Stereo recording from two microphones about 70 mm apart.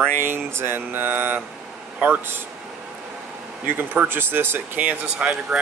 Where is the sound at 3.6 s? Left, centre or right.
Right.